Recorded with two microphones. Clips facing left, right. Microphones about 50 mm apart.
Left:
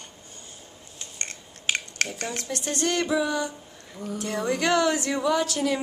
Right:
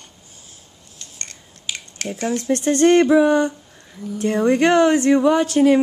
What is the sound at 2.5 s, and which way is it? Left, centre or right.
Speech, right.